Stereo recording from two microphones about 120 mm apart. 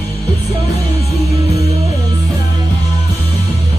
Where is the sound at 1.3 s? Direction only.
60° right (ahead or behind).